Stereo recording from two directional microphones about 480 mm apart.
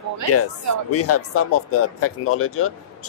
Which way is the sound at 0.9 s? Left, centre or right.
Left.